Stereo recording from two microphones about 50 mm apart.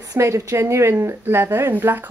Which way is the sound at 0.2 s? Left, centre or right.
Right.